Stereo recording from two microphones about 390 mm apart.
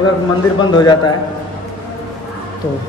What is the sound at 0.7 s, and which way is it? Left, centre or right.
Speech, centre.